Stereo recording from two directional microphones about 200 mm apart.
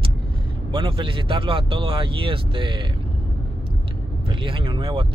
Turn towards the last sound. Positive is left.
turn(degrees=-25)  # may be behind; listen again after turning